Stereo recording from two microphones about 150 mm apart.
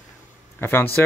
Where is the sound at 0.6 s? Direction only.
15° left (ahead or behind).